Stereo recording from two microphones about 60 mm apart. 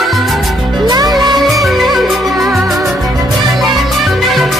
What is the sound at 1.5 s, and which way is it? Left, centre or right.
Music, centre.